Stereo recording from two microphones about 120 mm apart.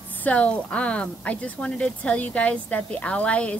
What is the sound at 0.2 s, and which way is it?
Speech, 10° left (ahead or behind).